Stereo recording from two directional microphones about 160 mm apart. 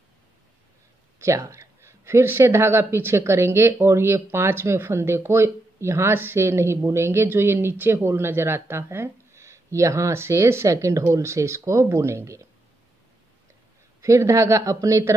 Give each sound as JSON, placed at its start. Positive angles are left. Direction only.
{"t": 1.2, "sound": "speech", "side_deg": -15}
{"t": 14.0, "sound": "speech", "side_deg": -20}